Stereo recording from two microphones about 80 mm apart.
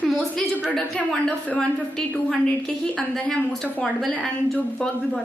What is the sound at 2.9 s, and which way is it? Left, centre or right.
Speech, centre.